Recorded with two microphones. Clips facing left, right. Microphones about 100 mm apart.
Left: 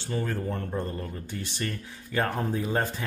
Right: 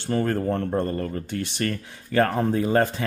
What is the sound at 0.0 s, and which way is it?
Speech, 55° right (ahead or behind).